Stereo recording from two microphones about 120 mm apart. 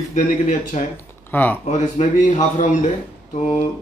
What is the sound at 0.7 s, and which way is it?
Speech, 75° left (ahead or behind).